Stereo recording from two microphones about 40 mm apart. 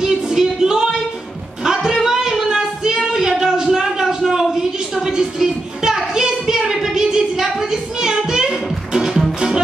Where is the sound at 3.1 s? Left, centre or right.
Centre.